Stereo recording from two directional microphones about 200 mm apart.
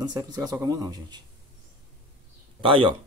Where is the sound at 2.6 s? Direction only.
25° right (ahead or behind).